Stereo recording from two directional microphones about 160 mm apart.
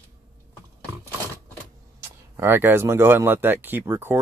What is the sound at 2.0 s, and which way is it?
Speech, 15° right (ahead or behind).